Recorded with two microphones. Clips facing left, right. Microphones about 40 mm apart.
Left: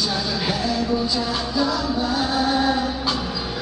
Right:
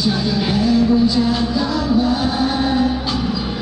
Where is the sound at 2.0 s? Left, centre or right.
Centre.